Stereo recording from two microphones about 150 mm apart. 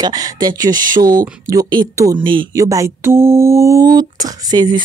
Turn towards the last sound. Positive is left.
turn(degrees=-30)  # may be behind; listen again after turning